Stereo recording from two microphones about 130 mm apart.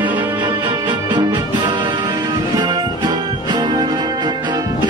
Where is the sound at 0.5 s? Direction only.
35° right (ahead or behind).